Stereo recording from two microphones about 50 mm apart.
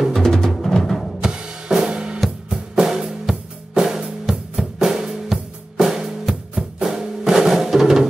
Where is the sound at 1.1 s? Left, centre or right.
Centre.